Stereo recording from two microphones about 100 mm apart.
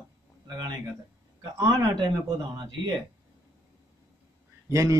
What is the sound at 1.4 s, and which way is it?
Speech, 40° right (ahead or behind).